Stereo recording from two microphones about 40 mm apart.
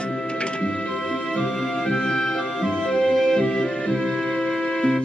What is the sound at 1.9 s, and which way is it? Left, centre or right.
Music, left.